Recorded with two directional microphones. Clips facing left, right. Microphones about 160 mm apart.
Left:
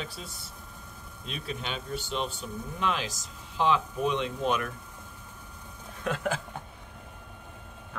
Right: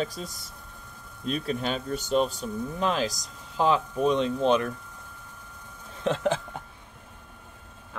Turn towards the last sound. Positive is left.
turn(degrees=-25)  # may be behind; listen again after turning